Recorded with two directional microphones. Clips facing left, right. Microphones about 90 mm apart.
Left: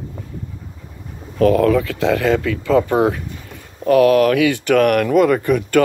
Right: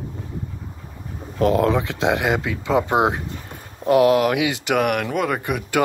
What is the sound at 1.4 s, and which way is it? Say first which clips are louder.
Speech: left 4 dB; 25° right (ahead or behind).